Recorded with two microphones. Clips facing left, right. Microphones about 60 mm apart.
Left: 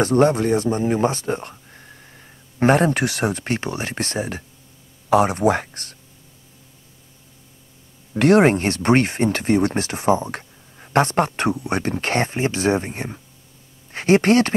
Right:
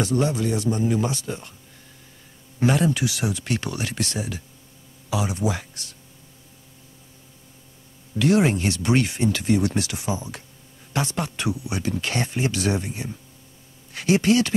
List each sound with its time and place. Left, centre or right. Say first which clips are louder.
0.0 s speech: left 6 dB; left
5.1 s speech: left 9 dB; left
8.1 s speech: left 5 dB; left